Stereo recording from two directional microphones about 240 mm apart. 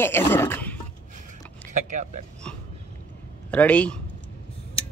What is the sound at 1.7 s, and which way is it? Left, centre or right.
Speech, right.